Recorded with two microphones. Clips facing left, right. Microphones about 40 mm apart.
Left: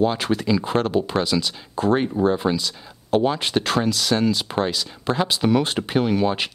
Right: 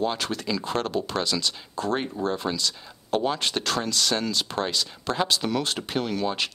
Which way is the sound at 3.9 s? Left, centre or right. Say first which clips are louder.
Left 5 dB; centre.